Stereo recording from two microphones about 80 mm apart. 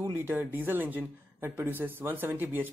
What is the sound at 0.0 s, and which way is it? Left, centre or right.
Speech, right.